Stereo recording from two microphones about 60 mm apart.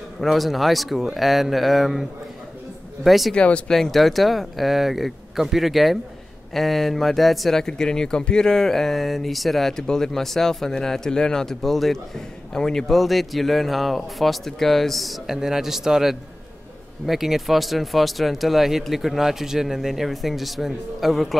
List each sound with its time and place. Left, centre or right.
0.2 s speech: centre
3.3 s speech: centre
3.7 s a man's voice: centre